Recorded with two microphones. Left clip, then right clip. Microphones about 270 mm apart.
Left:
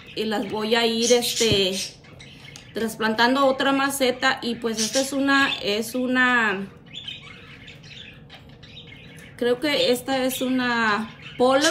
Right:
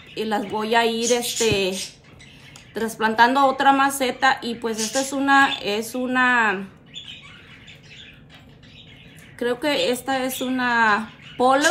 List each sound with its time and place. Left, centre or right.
0.1 s a woman's voice: centre
2.7 s a woman's voice: centre
9.4 s a woman's voice: centre